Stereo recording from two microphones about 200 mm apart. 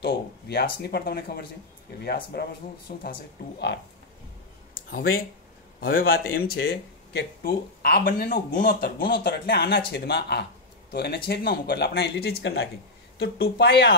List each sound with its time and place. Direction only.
0.0 s a man's voice: 55° left (ahead or behind)
5.8 s a man's voice: 45° left (ahead or behind)